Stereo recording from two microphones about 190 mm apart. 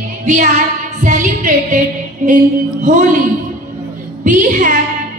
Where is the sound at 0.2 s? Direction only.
40° right (ahead or behind).